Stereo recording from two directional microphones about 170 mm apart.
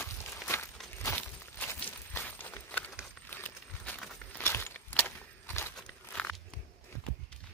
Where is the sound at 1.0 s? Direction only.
15° left (ahead or behind).